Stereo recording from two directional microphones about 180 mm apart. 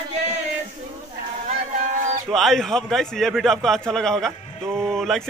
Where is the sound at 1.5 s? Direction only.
40° right (ahead or behind).